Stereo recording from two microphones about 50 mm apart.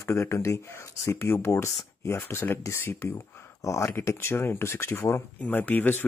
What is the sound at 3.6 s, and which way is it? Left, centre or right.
Speech, left.